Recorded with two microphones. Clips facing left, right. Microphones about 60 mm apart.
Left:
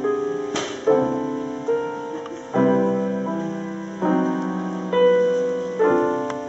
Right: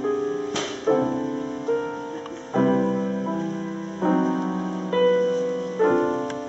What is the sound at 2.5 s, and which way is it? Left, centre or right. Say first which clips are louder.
Music: left 3 dB; centre.